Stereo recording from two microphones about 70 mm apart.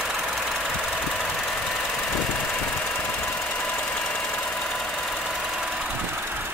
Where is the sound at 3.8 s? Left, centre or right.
Centre.